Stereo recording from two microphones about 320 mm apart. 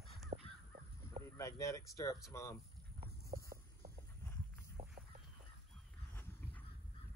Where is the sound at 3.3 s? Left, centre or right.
Right.